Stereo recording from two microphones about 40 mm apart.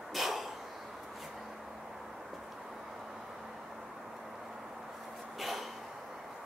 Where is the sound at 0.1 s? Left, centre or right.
Centre.